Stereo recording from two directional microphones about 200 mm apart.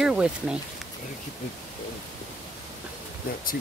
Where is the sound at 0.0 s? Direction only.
5° right (ahead or behind).